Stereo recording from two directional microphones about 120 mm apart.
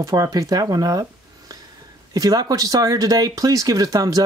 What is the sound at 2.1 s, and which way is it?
Speech, 30° right (ahead or behind).